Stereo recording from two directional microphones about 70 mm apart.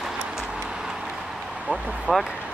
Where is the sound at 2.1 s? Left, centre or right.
Centre.